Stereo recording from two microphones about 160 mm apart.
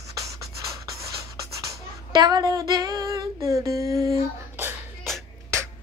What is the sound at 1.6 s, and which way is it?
Female singing, 25° right (ahead or behind).